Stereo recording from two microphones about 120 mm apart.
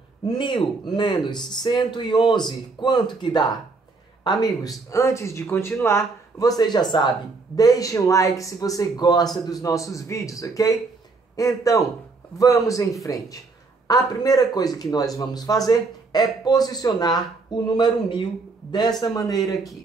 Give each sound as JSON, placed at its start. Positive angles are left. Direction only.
{"t": 0.9, "sound": "a man's voice", "side_deg": 40}